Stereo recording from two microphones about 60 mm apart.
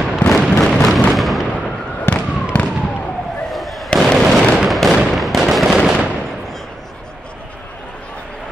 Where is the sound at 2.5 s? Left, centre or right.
Left.